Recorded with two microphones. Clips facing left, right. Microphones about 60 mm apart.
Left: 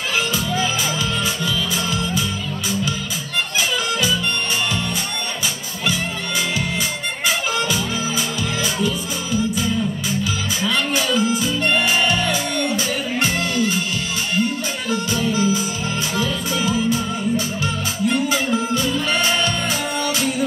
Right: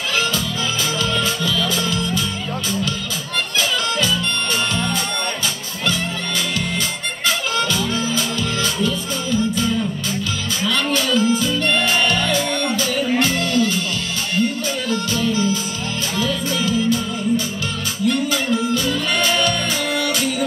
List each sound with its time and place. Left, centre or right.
1.2 s music: centre
7.2 s music: centre
14.9 s music: centre